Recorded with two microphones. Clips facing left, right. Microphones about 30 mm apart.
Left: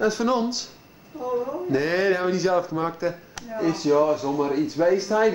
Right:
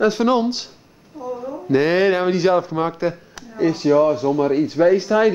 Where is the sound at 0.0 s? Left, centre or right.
Right.